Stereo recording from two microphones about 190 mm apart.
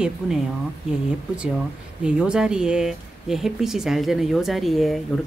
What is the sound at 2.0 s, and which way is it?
Speech, 5° right (ahead or behind).